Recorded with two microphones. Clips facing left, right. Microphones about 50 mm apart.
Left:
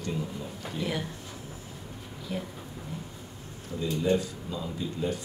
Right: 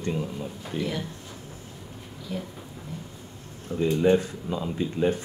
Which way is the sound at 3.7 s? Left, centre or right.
Right.